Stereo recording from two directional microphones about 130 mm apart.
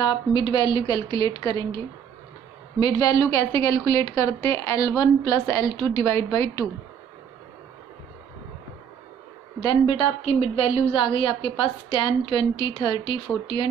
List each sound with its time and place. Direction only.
0.0 s a woman's voice: 35° left (ahead or behind)
2.8 s a woman's voice: 30° left (ahead or behind)
9.6 s a woman's voice: 35° left (ahead or behind)
10.2 s a woman's voice: 50° left (ahead or behind)